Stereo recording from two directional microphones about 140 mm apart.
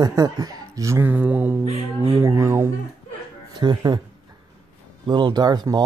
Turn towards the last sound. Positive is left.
turn(degrees=-30)  # may be behind; listen again after turning